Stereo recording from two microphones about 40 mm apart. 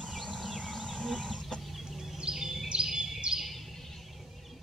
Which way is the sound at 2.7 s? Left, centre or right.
Centre.